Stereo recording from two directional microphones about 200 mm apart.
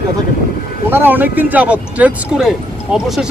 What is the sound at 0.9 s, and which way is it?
Speech, 10° right (ahead or behind).